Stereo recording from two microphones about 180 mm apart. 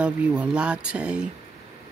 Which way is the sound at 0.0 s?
5° right (ahead or behind).